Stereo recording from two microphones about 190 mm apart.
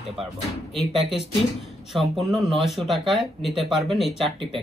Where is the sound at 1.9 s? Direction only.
Centre (ahead or behind).